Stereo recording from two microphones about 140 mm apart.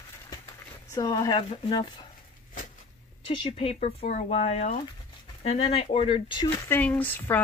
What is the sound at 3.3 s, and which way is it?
Speech, 40° left (ahead or behind).